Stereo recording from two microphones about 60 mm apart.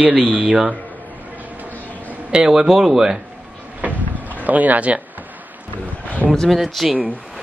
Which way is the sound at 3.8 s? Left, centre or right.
Right.